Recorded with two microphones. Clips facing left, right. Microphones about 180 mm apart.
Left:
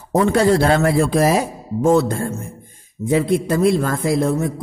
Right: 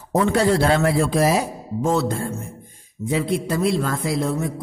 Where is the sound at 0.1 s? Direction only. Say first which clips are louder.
Left 3 dB; 45° left (ahead or behind).